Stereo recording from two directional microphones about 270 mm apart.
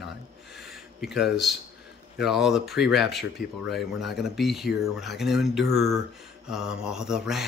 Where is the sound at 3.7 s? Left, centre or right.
Centre.